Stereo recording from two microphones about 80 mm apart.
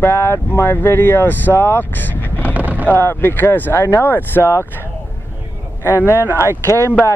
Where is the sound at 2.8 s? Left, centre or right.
Left.